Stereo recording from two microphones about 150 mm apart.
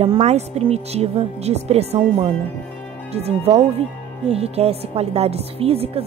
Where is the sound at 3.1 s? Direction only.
45° right (ahead or behind).